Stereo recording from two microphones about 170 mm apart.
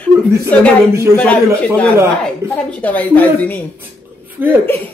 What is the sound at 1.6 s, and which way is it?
A woman's voice, 5° left (ahead or behind).